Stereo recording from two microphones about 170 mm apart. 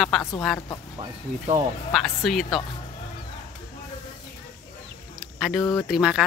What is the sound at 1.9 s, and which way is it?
Speech, centre (ahead or behind).